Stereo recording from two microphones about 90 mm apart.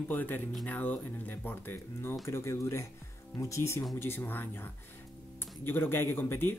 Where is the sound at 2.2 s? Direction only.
30° left (ahead or behind).